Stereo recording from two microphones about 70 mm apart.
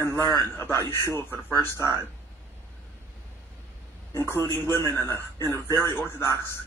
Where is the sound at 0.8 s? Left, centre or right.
Left.